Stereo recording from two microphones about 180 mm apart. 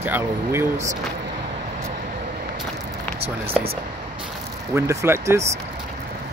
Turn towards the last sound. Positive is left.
turn(degrees=-15)  # may be behind; listen again after turning